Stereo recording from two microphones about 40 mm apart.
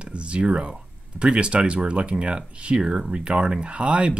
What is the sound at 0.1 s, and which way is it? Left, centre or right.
Speech, right.